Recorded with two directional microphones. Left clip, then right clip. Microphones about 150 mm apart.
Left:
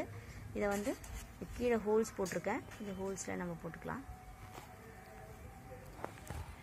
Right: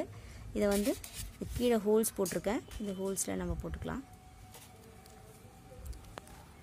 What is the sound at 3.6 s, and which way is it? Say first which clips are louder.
Speech: right 3 dB; 90° right.